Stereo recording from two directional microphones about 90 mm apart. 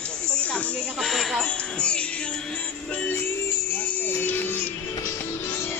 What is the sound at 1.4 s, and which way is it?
Music, 10° left (ahead or behind).